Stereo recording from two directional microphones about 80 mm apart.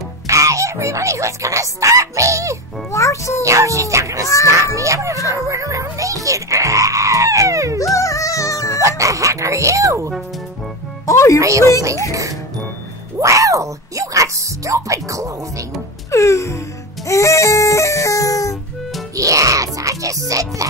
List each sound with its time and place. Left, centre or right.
0.3 s speech: right
2.9 s a child's voice: left
3.4 s a child's voice: right
7.8 s music: left
8.8 s speech: right
11.1 s a child's voice: left
11.3 s a child's voice: right
16.1 s music: left
19.1 s speech: right